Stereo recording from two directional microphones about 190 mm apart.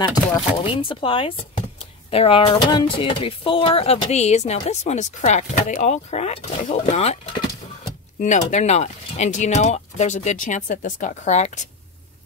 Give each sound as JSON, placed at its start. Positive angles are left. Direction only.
{"t": 0.0, "sound": "speech", "side_deg": 20}
{"t": 8.2, "sound": "speech", "side_deg": 40}